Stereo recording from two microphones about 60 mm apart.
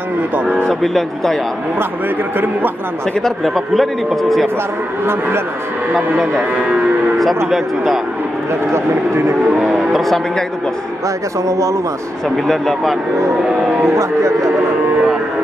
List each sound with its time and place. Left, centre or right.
0.7 s speech: centre
2.3 s a man's voice: right
3.2 s speech: centre
5.9 s speech: centre
7.4 s speech: centre
9.6 s speech: centre
10.0 s speech: centre
11.4 s speech: right
12.4 s speech: centre
13.8 s speech: right